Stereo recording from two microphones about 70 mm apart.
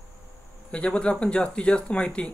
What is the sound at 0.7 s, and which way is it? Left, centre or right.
Speech, centre.